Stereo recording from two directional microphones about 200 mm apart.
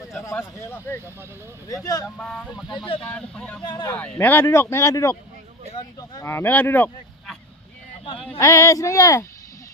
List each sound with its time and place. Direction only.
0.2 s speech: 15° left (ahead or behind)
2.1 s speech: centre (ahead or behind)
3.6 s speech: 20° left (ahead or behind)
3.9 s speech: 10° left (ahead or behind)
8.4 s speech: 15° left (ahead or behind)